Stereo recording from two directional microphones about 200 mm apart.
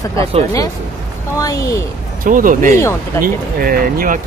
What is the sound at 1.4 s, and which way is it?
Speech, 15° left (ahead or behind).